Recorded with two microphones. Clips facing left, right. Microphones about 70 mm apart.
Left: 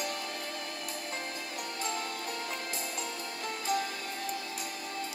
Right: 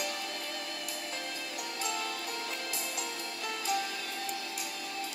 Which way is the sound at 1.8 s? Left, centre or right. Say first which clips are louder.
Even; left.